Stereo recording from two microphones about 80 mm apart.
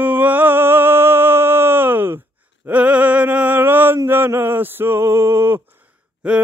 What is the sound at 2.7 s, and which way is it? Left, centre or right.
Mantra, centre.